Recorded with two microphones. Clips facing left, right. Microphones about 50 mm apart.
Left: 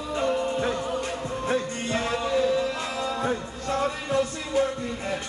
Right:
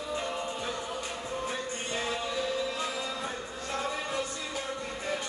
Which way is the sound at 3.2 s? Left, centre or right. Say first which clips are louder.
Left 8 dB; left.